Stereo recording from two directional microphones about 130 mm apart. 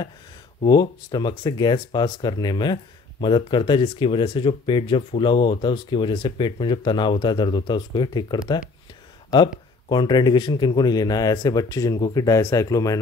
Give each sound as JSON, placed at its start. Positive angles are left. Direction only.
{"t": 0.7, "sound": "speech", "side_deg": 35}